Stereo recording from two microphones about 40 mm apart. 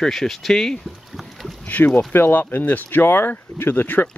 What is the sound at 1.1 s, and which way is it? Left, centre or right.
Boat, centre.